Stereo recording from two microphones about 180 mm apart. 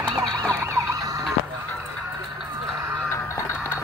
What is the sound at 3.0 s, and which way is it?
Music, 15° left (ahead or behind).